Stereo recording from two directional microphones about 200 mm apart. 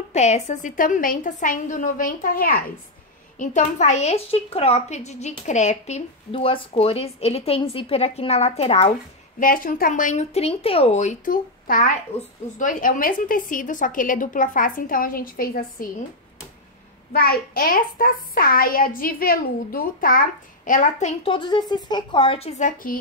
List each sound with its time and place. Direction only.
0.1 s a woman's voice: 35° left (ahead or behind)
9.4 s a woman's voice: 45° left (ahead or behind)
17.1 s a child's voice: 50° left (ahead or behind)
21.2 s a woman's voice: 25° left (ahead or behind); by 22.9 s 40° left (ahead or behind)